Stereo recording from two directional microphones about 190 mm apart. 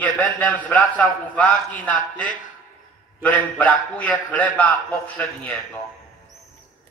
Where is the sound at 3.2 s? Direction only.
10° left (ahead or behind).